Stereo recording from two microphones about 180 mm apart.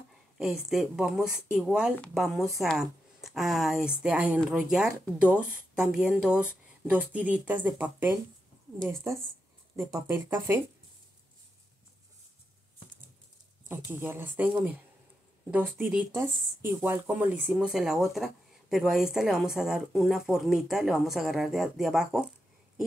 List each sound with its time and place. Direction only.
0.4 s speech: centre (ahead or behind)
13.7 s speech: 10° right (ahead or behind)